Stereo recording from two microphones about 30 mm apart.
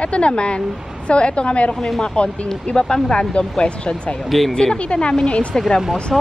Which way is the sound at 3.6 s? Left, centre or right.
Left.